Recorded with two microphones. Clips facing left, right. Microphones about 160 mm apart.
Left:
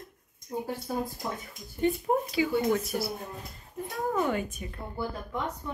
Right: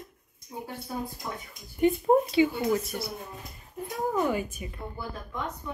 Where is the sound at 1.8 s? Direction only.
20° right (ahead or behind).